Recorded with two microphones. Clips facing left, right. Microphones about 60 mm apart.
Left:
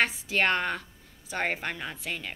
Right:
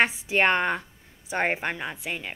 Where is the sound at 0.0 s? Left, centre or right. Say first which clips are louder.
Right 4 dB; right.